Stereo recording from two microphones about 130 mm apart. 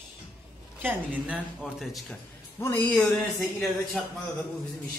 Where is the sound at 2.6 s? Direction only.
15° left (ahead or behind).